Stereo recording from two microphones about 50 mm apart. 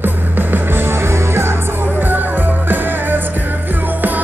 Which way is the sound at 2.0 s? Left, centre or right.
Right.